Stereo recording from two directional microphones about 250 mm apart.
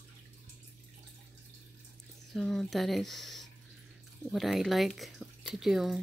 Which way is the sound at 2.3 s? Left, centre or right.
Centre.